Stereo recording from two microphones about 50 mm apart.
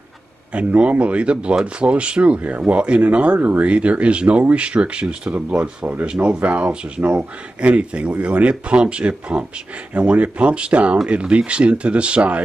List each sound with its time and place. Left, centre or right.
0.5 s speech: right